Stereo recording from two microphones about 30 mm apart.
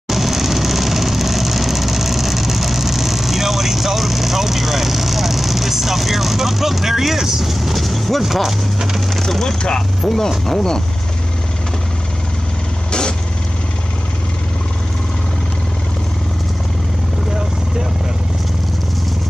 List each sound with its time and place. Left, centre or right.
0.1 s vehicle: centre
8.2 s speech: centre
9.2 s speech: centre
9.6 s speech: left
10.0 s speech: centre